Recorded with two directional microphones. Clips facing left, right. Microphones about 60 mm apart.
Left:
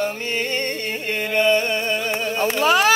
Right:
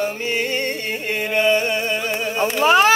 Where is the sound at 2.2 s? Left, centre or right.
Centre.